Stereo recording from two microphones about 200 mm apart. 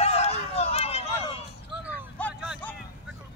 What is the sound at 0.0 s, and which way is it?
Chatter, 30° left (ahead or behind).